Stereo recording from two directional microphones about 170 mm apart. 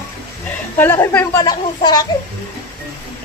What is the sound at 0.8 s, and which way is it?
Speech, 10° left (ahead or behind).